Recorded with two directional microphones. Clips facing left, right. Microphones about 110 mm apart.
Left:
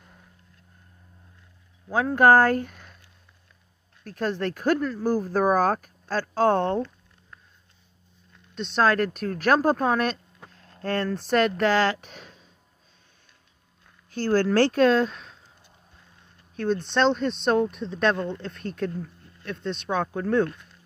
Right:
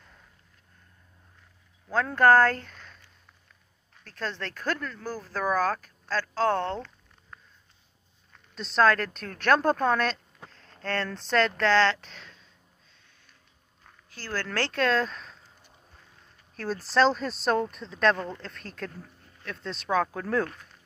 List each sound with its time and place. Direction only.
1.9 s speech: 15° left (ahead or behind)
4.0 s speech: 15° left (ahead or behind)
8.5 s speech: centre (ahead or behind)
14.1 s speech: 50° left (ahead or behind)
14.4 s speech: 15° left (ahead or behind)
16.5 s speech: 5° right (ahead or behind)